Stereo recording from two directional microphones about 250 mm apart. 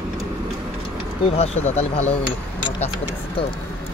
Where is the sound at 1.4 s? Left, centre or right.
Left.